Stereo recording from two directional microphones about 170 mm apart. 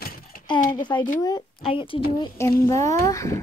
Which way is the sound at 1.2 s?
20° left (ahead or behind).